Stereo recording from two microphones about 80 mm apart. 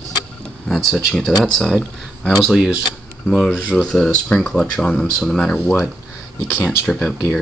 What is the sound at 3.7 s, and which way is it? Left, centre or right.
Speech, centre.